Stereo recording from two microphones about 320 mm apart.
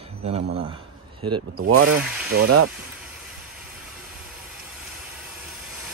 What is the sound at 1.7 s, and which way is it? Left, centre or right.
Speech, right.